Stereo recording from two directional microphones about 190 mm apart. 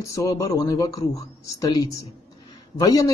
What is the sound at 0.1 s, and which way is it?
Speech, 15° left (ahead or behind).